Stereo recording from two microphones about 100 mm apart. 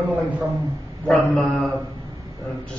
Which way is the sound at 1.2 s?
Centre (ahead or behind).